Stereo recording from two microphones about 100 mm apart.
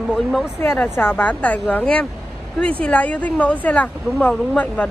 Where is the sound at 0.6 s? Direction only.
20° left (ahead or behind).